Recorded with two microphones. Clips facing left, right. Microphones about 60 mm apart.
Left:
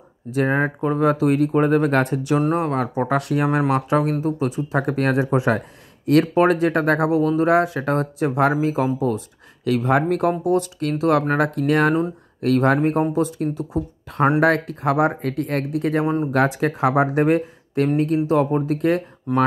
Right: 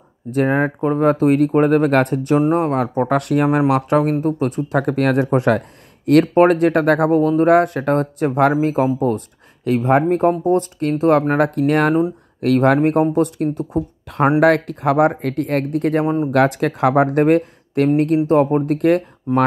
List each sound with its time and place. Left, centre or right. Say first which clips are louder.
0.3 s speech: right 3 dB; right
3.1 s speech: right 4 dB; right
10.0 s speech: right 4 dB; right
10.4 s speech: right 3 dB; right
16.3 s speech: right 3 dB; right